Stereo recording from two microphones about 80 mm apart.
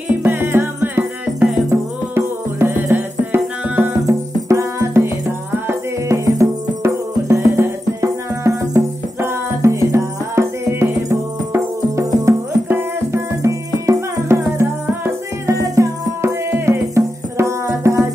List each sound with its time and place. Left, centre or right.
0.2 s music: right
3.8 s music: right